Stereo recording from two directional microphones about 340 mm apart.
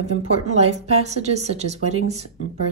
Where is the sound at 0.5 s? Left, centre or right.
Centre.